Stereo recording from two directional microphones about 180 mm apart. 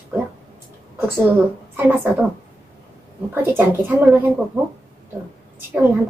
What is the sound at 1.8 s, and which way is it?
Speech, 10° right (ahead or behind).